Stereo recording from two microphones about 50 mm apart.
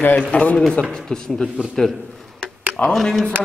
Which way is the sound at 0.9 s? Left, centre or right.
Centre.